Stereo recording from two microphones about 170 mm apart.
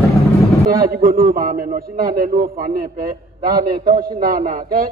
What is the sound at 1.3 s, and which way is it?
A man's voice, 55° right (ahead or behind).